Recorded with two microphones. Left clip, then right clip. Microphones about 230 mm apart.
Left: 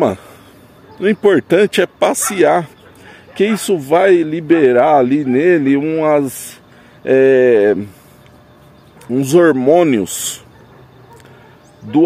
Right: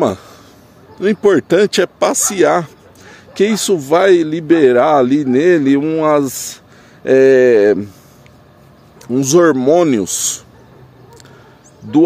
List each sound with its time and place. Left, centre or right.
0.9 s a man's voice: centre
9.0 s a man's voice: centre
10.0 s speech: left